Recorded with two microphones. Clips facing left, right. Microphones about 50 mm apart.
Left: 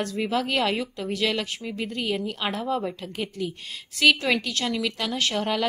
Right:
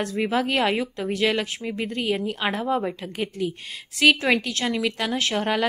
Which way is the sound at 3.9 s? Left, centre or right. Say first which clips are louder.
Right 2 dB; centre.